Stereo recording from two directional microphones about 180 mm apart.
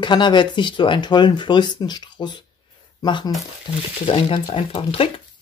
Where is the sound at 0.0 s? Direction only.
25° left (ahead or behind).